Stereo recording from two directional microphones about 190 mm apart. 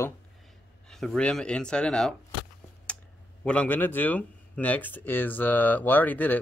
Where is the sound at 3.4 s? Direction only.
5° left (ahead or behind).